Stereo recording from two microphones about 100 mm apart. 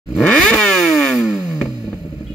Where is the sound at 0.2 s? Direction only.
10° left (ahead or behind).